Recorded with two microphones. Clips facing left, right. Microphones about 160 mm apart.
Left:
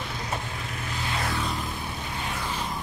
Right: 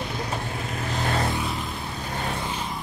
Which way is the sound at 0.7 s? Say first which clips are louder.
Right 6 dB; 45° right (ahead or behind).